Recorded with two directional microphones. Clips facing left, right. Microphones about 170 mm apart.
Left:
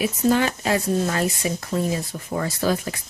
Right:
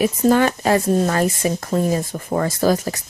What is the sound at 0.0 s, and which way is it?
Speech, 50° right (ahead or behind).